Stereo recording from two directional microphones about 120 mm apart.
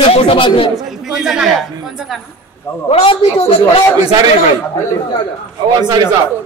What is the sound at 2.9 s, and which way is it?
Speech, 50° left (ahead or behind).